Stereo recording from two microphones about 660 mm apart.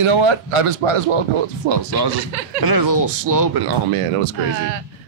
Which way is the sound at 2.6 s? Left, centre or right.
Right.